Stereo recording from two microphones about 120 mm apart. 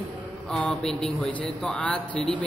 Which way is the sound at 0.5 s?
5° left (ahead or behind).